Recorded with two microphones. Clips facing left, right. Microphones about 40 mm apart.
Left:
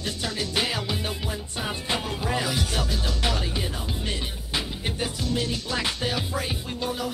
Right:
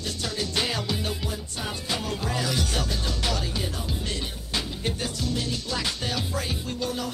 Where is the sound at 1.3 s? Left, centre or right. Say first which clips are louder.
Left 2 dB; left.